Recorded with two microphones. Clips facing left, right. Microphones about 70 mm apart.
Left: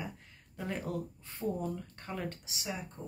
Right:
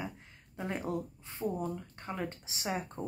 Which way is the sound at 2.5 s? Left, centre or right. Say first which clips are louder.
Right 5 dB; right.